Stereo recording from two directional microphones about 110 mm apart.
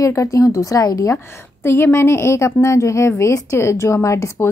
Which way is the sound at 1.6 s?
20° left (ahead or behind).